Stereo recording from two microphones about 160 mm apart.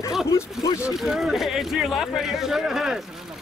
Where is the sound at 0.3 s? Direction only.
20° left (ahead or behind).